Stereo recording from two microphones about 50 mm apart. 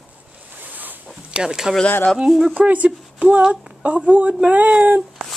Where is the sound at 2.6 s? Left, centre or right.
Right.